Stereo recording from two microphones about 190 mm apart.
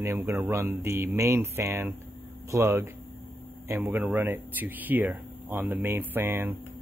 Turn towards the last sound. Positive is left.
turn(degrees=-10)  # may be behind; listen again after turning